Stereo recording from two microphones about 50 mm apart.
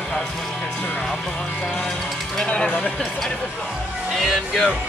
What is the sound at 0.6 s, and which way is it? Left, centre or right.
Music, left.